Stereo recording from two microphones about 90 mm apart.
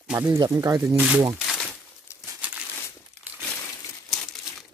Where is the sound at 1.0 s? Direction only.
15° right (ahead or behind).